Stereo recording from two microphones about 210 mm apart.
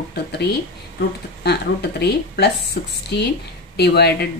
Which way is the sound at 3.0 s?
50° left (ahead or behind).